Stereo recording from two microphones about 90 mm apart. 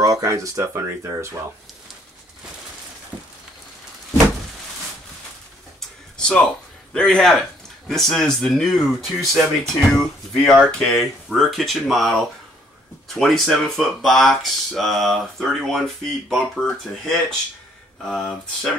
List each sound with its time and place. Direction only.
0.0 s speech: 40° right (ahead or behind)
6.1 s a sound: 10° left (ahead or behind)
6.9 s a man's voice: 5° left (ahead or behind)
17.0 s speech: 5° left (ahead or behind)